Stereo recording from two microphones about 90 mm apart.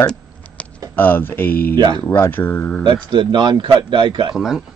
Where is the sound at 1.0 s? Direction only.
20° left (ahead or behind).